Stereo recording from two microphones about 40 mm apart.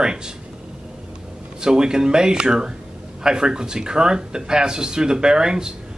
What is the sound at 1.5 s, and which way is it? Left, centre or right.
Speech, centre.